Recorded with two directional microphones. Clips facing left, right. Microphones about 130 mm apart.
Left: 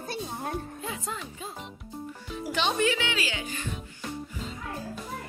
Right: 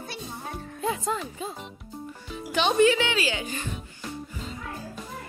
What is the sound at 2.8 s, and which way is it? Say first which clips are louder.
Speech: right 6 dB; 35° right (ahead or behind).